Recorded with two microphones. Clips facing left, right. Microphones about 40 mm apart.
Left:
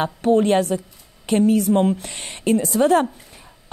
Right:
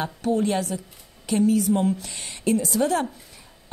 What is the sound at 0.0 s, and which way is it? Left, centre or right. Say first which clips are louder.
A woman's voice: left 6 dB; left.